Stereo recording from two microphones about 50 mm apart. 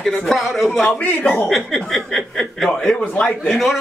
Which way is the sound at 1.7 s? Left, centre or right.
Centre.